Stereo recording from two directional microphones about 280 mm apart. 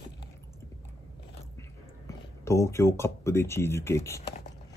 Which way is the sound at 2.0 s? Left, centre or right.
Centre.